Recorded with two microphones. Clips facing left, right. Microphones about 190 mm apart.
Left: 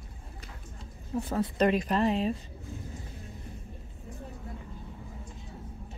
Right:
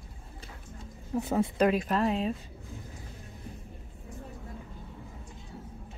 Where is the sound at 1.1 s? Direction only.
20° right (ahead or behind).